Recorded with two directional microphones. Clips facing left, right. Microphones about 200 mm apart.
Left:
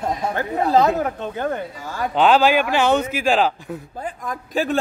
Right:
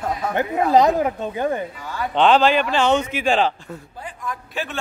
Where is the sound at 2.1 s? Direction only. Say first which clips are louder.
Even; 5° left (ahead or behind).